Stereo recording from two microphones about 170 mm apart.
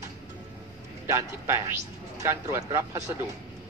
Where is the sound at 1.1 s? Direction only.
15° right (ahead or behind).